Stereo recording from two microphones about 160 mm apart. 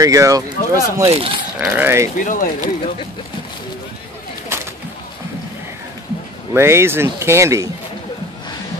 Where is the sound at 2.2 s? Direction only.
55° left (ahead or behind).